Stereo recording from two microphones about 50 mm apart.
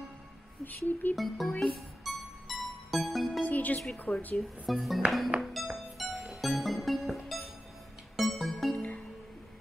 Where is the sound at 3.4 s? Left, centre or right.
Left.